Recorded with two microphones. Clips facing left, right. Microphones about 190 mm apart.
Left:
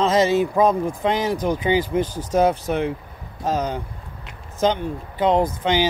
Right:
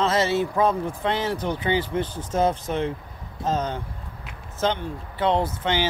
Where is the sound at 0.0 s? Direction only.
15° left (ahead or behind).